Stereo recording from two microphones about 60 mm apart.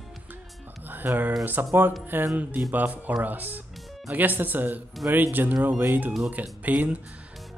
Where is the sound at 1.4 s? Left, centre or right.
Right.